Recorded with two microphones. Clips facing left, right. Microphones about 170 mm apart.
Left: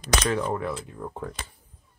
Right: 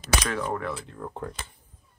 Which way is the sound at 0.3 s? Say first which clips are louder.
Left 3 dB; 20° left (ahead or behind).